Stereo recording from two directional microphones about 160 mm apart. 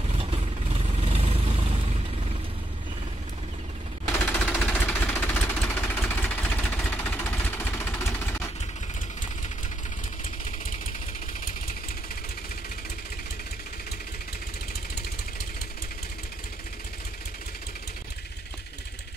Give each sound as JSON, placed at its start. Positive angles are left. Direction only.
{"t": 0.1, "sound": "vehicle", "side_deg": -35}
{"t": 4.1, "sound": "jackhammer", "side_deg": 10}
{"t": 5.9, "sound": "vehicle", "side_deg": 10}